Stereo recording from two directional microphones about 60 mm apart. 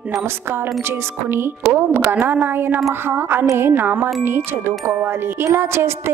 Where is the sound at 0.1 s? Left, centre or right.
Right.